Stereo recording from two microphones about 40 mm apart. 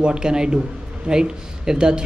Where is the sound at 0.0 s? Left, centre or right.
Right.